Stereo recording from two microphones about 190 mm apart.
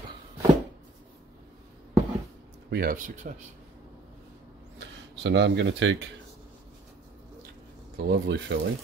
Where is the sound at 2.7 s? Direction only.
50° right (ahead or behind).